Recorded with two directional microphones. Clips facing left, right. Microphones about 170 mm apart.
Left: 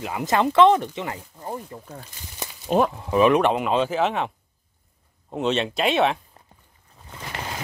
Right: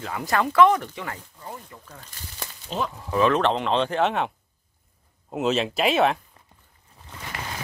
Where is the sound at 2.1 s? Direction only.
15° left (ahead or behind).